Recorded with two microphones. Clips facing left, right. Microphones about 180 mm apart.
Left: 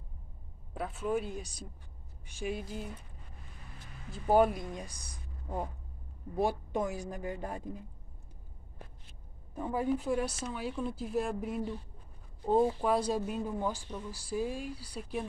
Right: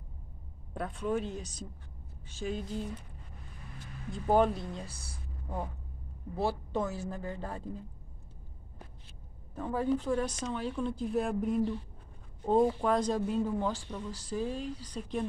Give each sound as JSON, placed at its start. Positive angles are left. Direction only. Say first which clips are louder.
{"t": 0.7, "sound": "speech", "louder": "even", "side_deg": 5}
{"t": 4.1, "sound": "speech", "louder": "left 1 dB", "side_deg": 10}
{"t": 9.6, "sound": "speech", "louder": "right 1 dB", "side_deg": 15}
{"t": 12.6, "sound": "speech", "louder": "right 1 dB", "side_deg": 10}